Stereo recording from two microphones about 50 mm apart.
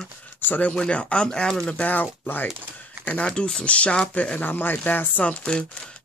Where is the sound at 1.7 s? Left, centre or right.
Left.